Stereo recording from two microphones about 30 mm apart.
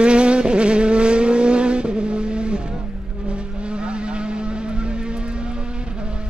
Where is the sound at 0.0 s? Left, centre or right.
Right.